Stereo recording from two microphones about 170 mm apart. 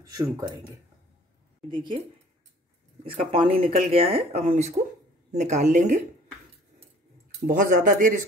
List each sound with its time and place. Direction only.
0.1 s speech: 20° right (ahead or behind)
1.7 s a woman's voice: 30° right (ahead or behind); by 5.9 s 45° right (ahead or behind)
7.2 s speech: 50° right (ahead or behind)